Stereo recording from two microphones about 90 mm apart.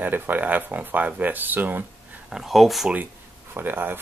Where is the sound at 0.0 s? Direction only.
20° right (ahead or behind).